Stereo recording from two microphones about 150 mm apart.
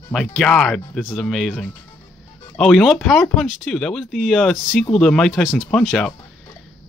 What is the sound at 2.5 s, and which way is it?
Speech, 5° left (ahead or behind).